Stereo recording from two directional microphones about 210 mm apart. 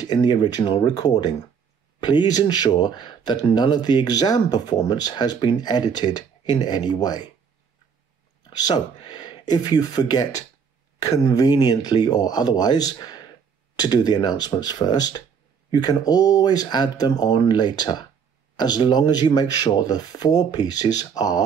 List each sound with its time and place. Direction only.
0.0 s speech: 20° left (ahead or behind)
8.5 s speech: 20° left (ahead or behind)